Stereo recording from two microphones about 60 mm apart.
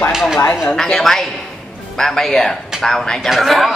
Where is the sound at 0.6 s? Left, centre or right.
Centre.